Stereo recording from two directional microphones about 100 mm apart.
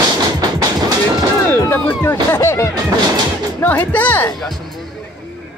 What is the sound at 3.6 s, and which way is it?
Speech, 15° left (ahead or behind).